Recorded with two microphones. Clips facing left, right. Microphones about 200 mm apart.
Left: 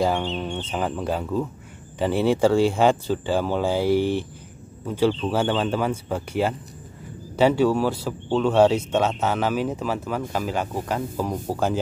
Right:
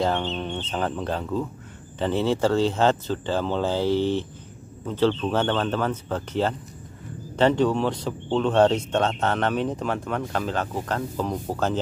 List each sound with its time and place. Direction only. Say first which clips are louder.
0.0 s speech: left 2 dB; 10° left (ahead or behind)